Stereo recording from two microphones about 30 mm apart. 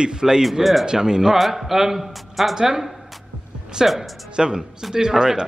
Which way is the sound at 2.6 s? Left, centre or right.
Centre.